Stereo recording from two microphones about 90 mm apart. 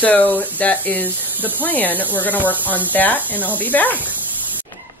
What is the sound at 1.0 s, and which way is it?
Speech, 20° right (ahead or behind).